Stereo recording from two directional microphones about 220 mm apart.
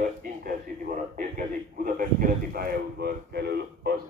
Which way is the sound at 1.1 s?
40° right (ahead or behind).